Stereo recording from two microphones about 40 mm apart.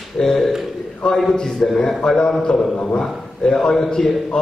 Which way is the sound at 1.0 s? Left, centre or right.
Left.